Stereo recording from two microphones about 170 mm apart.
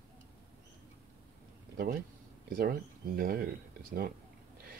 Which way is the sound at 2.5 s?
60° right (ahead or behind).